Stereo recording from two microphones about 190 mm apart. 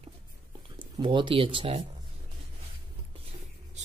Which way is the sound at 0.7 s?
25° right (ahead or behind).